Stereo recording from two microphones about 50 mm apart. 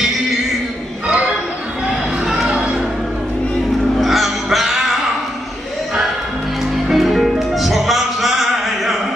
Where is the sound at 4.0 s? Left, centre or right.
Centre.